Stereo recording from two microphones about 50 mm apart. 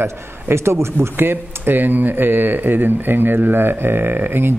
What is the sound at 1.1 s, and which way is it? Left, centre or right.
Speech, right.